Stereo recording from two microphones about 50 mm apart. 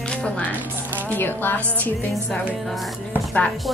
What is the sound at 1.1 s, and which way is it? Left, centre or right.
Speech, left.